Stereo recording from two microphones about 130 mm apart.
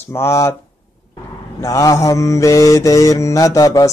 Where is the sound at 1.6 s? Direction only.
25° left (ahead or behind).